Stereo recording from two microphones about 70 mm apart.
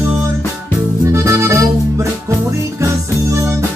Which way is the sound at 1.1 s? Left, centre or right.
Right.